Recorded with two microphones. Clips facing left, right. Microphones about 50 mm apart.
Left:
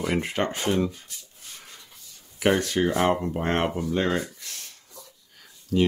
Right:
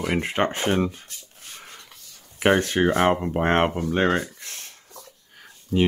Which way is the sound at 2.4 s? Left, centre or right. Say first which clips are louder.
Right 3 dB; right.